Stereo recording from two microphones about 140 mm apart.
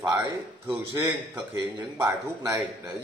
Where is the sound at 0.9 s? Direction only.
25° right (ahead or behind).